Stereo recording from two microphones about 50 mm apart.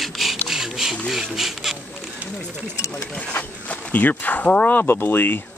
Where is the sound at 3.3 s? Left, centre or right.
Left.